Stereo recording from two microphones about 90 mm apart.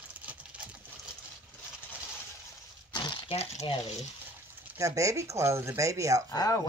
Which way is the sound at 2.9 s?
55° left (ahead or behind).